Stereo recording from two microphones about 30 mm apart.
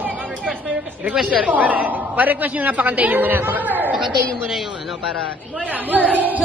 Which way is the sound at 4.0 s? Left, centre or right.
Centre.